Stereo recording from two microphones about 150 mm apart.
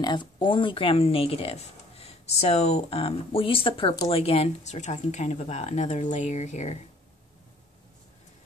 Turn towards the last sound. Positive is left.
turn(degrees=50)  # may be behind; listen again after turning